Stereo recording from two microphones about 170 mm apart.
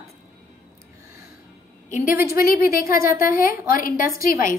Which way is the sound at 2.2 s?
15° right (ahead or behind).